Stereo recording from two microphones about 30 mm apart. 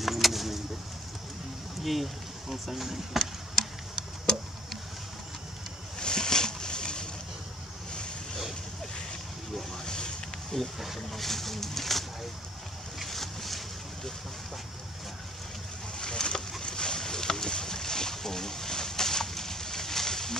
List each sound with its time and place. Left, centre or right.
0.0 s bird: centre
1.8 s speech: centre
5.9 s boat: left
9.8 s vehicle: left
10.5 s speech: centre
13.0 s a sound: centre
16.0 s a sound: left
16.6 s boat: left